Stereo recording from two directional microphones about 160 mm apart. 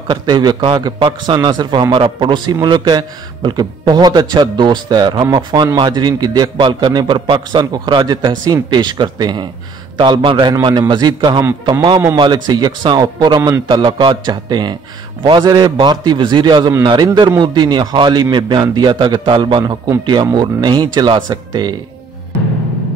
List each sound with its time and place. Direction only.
0.1 s a man's voice: 25° right (ahead or behind)